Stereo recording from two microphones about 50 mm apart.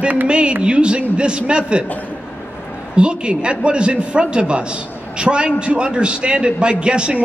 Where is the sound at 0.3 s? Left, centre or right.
Centre.